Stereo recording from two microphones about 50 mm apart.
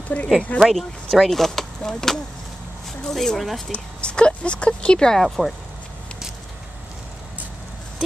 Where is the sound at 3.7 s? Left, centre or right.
Left.